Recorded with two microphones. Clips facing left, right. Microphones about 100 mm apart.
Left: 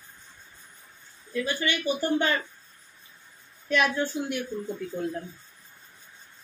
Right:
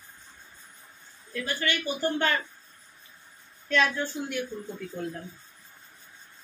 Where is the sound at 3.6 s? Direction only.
15° left (ahead or behind).